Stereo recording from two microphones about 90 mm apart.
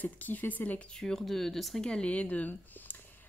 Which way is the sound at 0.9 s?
5° left (ahead or behind).